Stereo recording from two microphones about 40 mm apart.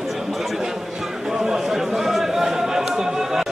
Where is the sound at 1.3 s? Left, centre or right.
Centre.